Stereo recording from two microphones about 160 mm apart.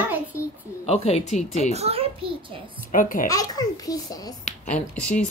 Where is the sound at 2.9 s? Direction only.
55° left (ahead or behind).